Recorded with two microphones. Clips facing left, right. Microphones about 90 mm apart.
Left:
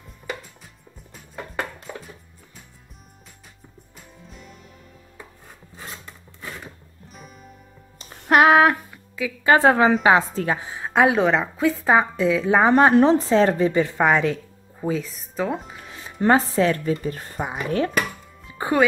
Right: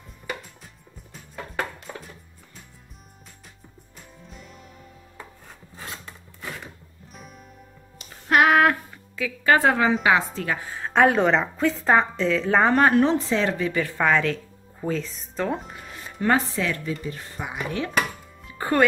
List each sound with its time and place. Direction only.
2.0 s music: 5° left (ahead or behind)
7.2 s music: centre (ahead or behind)
8.0 s music: 35° left (ahead or behind)
8.5 s speech: 15° left (ahead or behind)
8.9 s a sound: 10° left (ahead or behind)
9.5 s a woman's voice: 30° left (ahead or behind)
10.9 s a woman's voice: 5° left (ahead or behind)
12.9 s a woman's voice: 35° left (ahead or behind); by 16.1 s centre (ahead or behind)
16.2 s speech: 35° left (ahead or behind)
18.6 s speech: 20° left (ahead or behind)